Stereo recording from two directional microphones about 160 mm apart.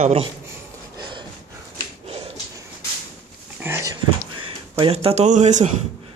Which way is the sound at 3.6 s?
15° right (ahead or behind).